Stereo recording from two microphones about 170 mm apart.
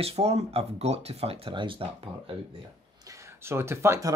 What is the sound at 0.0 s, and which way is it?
Speech, 35° right (ahead or behind).